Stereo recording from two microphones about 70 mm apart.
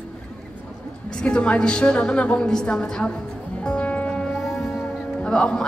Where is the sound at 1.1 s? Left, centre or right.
Centre.